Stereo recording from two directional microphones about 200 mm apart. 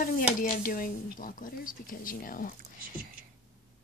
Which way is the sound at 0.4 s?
45° left (ahead or behind).